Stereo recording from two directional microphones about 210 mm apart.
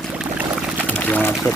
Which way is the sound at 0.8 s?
5° left (ahead or behind).